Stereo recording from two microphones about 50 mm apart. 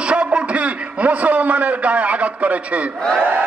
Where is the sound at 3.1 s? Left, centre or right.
Right.